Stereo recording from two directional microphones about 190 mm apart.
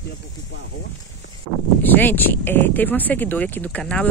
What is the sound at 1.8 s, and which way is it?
Speech, 10° left (ahead or behind).